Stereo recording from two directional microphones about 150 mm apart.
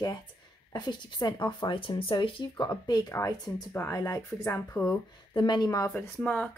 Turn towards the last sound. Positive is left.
turn(degrees=5)  # may be behind; listen again after turning